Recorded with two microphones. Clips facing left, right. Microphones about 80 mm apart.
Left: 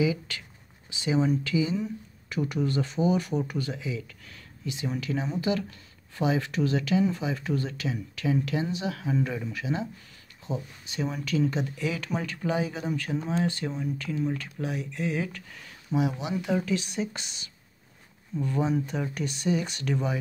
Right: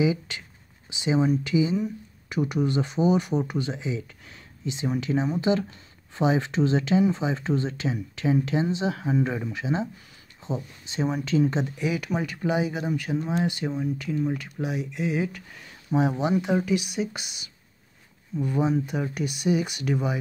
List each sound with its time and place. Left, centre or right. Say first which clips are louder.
0.0 s speech: right 2 dB; right
15.9 s speech: right 5 dB; right
16.3 s speech: right 3 dB; centre